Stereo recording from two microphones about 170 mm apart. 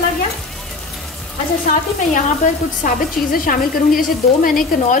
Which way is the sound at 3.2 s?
Centre (ahead or behind).